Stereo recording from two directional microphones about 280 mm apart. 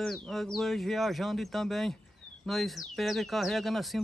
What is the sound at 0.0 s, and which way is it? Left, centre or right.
Speech, centre.